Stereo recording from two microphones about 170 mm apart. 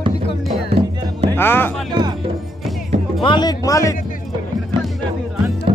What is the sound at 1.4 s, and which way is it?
Speech, 10° left (ahead or behind).